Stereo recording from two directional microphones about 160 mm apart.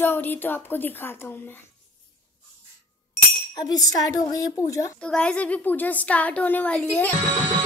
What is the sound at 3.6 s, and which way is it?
A woman's voice, 25° left (ahead or behind).